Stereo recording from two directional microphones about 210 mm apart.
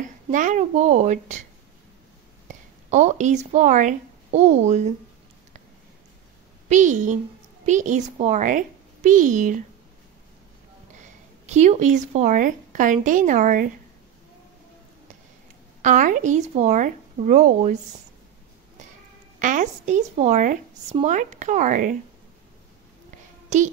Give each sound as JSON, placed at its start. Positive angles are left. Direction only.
{"t": 0.0, "sound": "a woman's voice", "side_deg": -35}
{"t": 2.4, "sound": "speech", "side_deg": -35}
{"t": 6.7, "sound": "a woman's voice", "side_deg": -35}
{"t": 11.0, "sound": "speech", "side_deg": -35}
{"t": 15.8, "sound": "a woman's voice", "side_deg": -35}
{"t": 19.4, "sound": "a woman's voice", "side_deg": -35}